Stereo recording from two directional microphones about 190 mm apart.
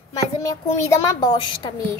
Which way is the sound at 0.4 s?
15° left (ahead or behind).